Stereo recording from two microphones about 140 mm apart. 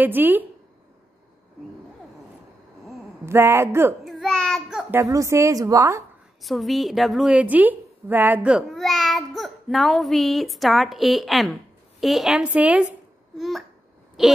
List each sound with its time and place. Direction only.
0.0 s speech: 15° right (ahead or behind)
3.3 s speech: 20° right (ahead or behind)
4.0 s child singing: centre (ahead or behind)
4.9 s a woman's voice: 20° right (ahead or behind)
6.4 s a woman's voice: centre (ahead or behind)